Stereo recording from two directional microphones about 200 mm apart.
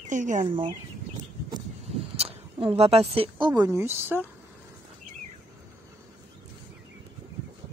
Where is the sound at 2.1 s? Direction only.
30° right (ahead or behind); by 4.3 s 10° right (ahead or behind).